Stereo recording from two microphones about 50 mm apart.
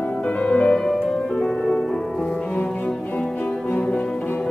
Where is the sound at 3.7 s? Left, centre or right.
Left.